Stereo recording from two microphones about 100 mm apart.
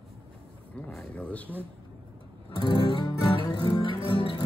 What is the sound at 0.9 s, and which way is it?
Speech, 15° left (ahead or behind).